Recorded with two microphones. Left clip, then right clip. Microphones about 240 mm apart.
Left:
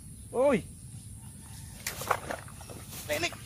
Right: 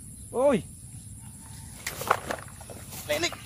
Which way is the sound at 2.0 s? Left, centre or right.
Right.